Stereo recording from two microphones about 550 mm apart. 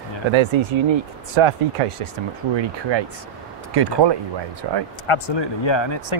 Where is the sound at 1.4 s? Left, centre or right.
Right.